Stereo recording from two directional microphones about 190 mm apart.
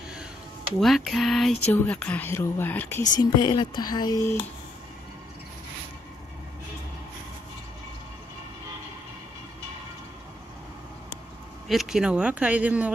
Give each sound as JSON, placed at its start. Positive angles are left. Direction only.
{"t": 0.7, "sound": "speech", "side_deg": 0}
{"t": 3.2, "sound": "speech", "side_deg": 20}
{"t": 11.6, "sound": "speech", "side_deg": 0}